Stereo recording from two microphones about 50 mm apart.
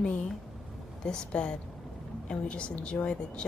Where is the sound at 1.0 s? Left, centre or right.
Centre.